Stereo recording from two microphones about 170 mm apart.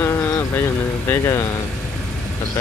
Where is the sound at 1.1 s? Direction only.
15° left (ahead or behind).